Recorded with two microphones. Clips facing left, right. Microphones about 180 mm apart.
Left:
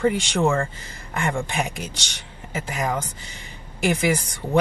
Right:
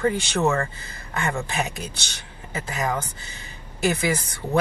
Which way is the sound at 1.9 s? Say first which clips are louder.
Left 1 dB; 90° left.